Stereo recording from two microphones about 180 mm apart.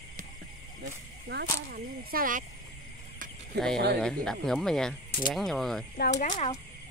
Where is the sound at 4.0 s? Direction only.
5° left (ahead or behind).